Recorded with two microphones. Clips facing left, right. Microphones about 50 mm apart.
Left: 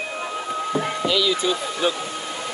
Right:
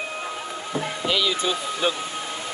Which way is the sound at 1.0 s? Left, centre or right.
Right.